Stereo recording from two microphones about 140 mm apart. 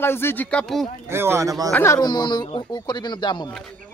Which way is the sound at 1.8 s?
25° left (ahead or behind).